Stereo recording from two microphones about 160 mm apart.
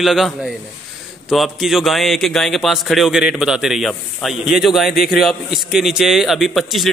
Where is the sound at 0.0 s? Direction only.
Centre (ahead or behind).